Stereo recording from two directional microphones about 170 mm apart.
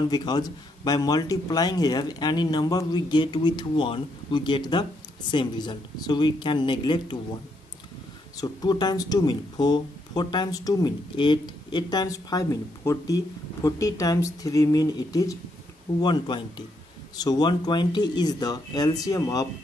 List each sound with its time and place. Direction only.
0.1 s speech: 25° left (ahead or behind)
8.4 s speech: 25° left (ahead or behind)